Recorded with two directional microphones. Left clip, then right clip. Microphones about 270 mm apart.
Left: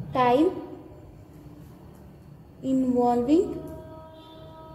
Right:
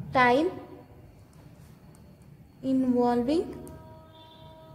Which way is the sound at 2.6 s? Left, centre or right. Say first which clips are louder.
Left 2 dB; right.